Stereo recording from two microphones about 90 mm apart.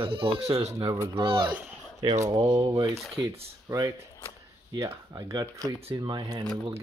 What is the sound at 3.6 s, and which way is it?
Speech, 45° right (ahead or behind).